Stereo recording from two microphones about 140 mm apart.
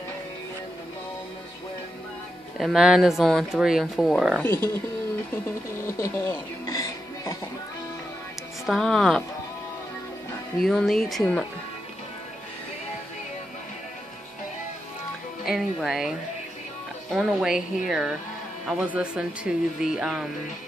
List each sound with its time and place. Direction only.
2.5 s speech: centre (ahead or behind)
5.9 s music: 20° left (ahead or behind)
8.6 s speech: centre (ahead or behind)
10.6 s speech: centre (ahead or behind)
15.4 s speech: centre (ahead or behind)